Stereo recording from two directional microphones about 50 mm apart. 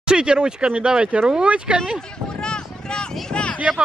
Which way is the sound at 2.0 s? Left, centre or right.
Centre.